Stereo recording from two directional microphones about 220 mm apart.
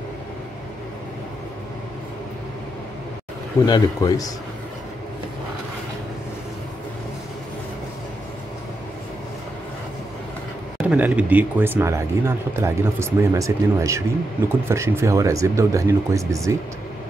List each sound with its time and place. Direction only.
3.6 s speech: 20° left (ahead or behind)
10.8 s speech: 5° right (ahead or behind)